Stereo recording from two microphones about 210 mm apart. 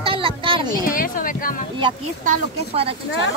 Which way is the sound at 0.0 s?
25° right (ahead or behind).